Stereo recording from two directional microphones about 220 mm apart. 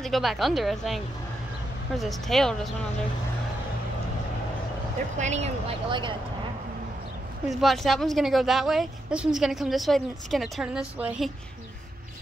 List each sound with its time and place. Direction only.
0.0 s a woman's voice: centre (ahead or behind)
5.1 s speech: 30° right (ahead or behind)
7.4 s a woman's voice: centre (ahead or behind)